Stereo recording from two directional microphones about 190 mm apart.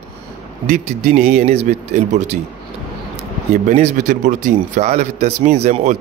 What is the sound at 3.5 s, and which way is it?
A man's voice, 40° right (ahead or behind).